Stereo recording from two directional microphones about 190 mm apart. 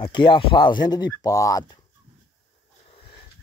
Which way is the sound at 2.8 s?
30° left (ahead or behind).